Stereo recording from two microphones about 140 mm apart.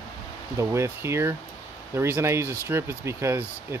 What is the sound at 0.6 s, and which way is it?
Speech, 20° right (ahead or behind).